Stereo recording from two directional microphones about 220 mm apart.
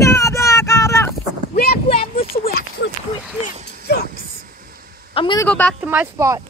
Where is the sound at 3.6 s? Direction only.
40° right (ahead or behind).